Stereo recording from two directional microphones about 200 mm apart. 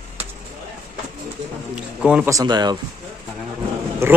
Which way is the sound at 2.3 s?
20° right (ahead or behind).